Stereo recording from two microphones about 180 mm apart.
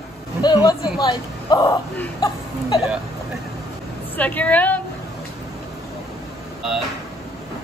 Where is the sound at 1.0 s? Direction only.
25° left (ahead or behind).